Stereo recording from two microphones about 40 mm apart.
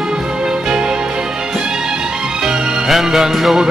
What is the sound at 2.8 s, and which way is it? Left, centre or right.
Music, centre.